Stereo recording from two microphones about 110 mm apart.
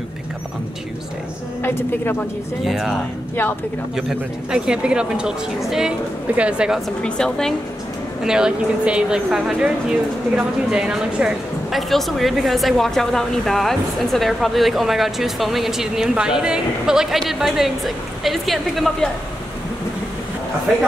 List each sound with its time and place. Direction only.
1.6 s a woman's voice: 20° left (ahead or behind)
2.6 s speech: centre (ahead or behind)
7.0 s speech: 10° left (ahead or behind)
8.2 s speech: 5° right (ahead or behind)